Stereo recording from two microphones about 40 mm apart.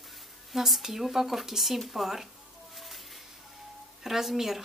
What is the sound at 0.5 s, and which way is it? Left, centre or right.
Speech, centre.